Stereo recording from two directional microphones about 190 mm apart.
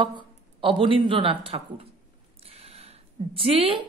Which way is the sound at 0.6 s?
25° right (ahead or behind).